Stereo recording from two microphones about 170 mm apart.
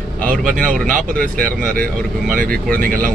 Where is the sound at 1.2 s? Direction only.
55° right (ahead or behind).